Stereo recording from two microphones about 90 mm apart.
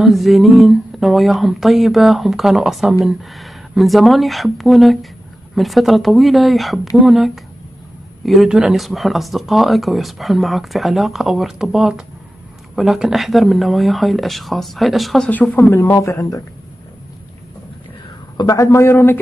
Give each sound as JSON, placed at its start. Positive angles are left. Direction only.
{"t": 0.0, "sound": "speech", "side_deg": 0}
{"t": 15.2, "sound": "speech", "side_deg": 15}
{"t": 15.7, "sound": "a man's voice", "side_deg": 30}
{"t": 18.4, "sound": "a man's voice", "side_deg": 40}